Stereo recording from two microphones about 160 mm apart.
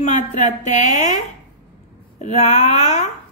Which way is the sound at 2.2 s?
45° left (ahead or behind).